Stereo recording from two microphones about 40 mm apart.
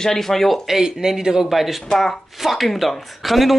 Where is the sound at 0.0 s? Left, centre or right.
Centre.